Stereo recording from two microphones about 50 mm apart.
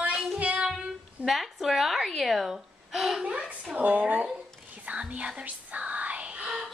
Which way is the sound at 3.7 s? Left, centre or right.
Right.